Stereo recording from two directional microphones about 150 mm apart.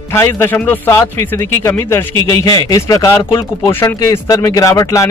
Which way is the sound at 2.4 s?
25° left (ahead or behind).